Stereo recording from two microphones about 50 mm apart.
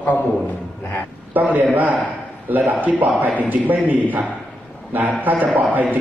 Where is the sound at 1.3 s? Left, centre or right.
Right.